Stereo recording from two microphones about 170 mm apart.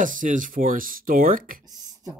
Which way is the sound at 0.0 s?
50° right (ahead or behind).